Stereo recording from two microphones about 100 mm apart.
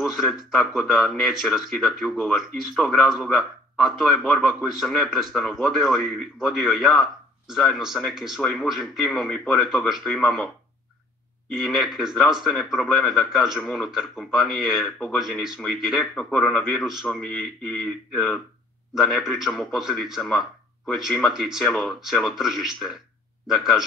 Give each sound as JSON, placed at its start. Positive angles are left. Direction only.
{"t": 0.0, "sound": "speech", "side_deg": 0}
{"t": 11.5, "sound": "speech", "side_deg": -5}